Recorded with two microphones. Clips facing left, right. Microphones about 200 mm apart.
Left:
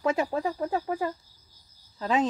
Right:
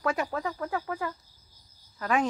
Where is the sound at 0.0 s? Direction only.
25° left (ahead or behind).